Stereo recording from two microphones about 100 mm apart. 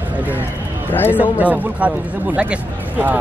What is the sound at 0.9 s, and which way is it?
Speech, 20° left (ahead or behind).